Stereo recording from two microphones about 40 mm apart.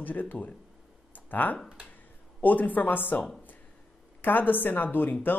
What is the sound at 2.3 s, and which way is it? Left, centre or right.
Speech, left.